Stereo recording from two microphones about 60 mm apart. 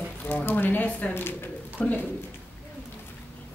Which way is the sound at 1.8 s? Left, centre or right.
Left.